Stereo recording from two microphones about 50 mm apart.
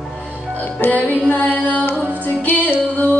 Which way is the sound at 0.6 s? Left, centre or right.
Left.